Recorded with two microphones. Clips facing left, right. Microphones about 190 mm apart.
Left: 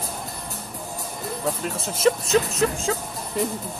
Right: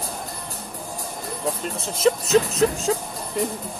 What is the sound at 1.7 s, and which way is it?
Speech, centre (ahead or behind).